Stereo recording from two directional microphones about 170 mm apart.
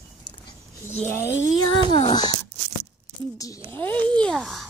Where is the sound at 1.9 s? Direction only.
30° left (ahead or behind).